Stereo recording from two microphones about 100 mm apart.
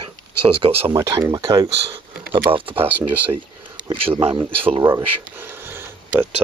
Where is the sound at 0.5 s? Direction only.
70° right (ahead or behind).